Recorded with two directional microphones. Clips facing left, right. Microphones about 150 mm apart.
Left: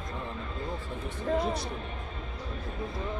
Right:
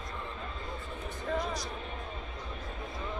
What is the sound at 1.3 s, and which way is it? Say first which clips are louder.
Speech: left 5 dB; 25° left (ahead or behind).